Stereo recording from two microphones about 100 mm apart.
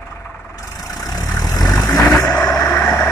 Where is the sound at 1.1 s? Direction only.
40° left (ahead or behind).